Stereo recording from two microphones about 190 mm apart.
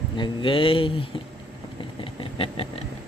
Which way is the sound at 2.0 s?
30° left (ahead or behind).